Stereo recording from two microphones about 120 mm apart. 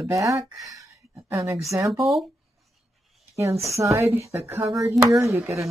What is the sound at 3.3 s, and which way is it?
A woman's voice, 25° right (ahead or behind).